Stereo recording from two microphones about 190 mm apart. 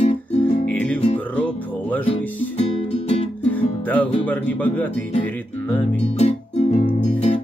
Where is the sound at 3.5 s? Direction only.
10° left (ahead or behind).